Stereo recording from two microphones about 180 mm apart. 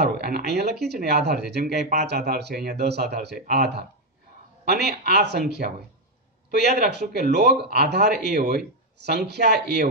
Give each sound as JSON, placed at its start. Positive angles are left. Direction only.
{"t": 0.0, "sound": "speech", "side_deg": -60}